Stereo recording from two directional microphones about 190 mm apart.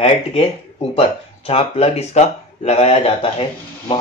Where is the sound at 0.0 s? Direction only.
30° left (ahead or behind).